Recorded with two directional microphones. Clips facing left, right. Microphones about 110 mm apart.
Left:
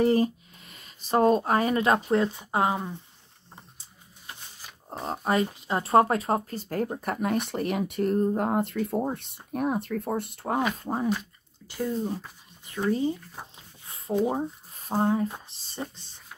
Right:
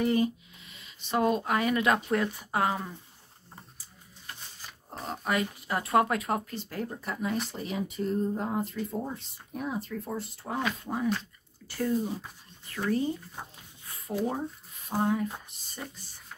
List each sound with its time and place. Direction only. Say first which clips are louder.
0.0 s speech: left 4 dB; 35° left (ahead or behind); by 3.0 s 20° left (ahead or behind)
5.0 s speech: left 4 dB; 35° left (ahead or behind); by 10.6 s 60° left (ahead or behind)
10.8 s speech: left 3 dB; 35° left (ahead or behind)
11.1 s speech: left 2 dB; 15° left (ahead or behind)
12.0 s speech: left 2 dB; centre (ahead or behind)
12.6 s speech: left 3 dB; 20° left (ahead or behind)
13.8 s a sound: left 6 dB; 25° left (ahead or behind)
14.8 s speech: left 3 dB; 30° left (ahead or behind)